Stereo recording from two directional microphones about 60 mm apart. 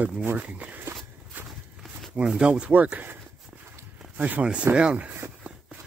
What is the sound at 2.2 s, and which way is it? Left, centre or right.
Speech, centre.